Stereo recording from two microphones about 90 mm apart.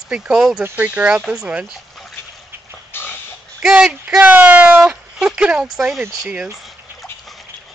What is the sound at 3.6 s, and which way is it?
Speech, 5° right (ahead or behind).